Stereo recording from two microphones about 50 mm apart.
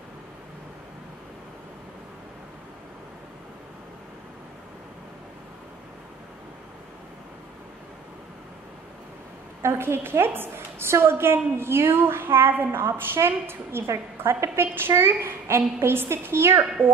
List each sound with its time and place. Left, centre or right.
9.6 s a woman's voice: right